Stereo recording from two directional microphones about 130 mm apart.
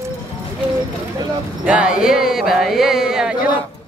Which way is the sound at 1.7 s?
5° right (ahead or behind).